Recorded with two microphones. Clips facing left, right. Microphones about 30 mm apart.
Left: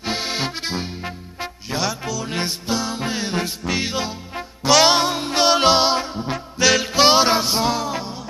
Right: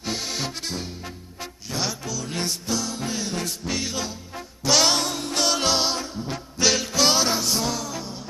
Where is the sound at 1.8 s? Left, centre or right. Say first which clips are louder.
Left 4 dB; centre.